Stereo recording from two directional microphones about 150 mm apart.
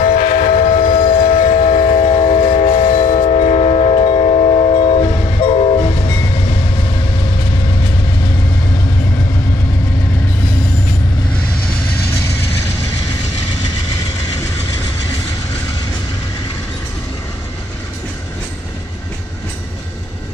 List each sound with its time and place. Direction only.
0.0 s train: 60° left (ahead or behind); by 2.8 s 45° left (ahead or behind)
2.8 s train: 60° left (ahead or behind); by 5.9 s 40° left (ahead or behind)